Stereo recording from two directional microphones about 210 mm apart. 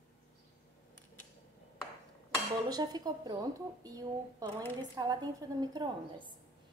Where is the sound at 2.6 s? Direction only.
20° right (ahead or behind).